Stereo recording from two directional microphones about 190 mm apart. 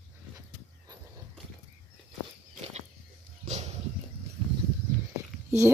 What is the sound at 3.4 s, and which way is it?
Dog, 35° right (ahead or behind).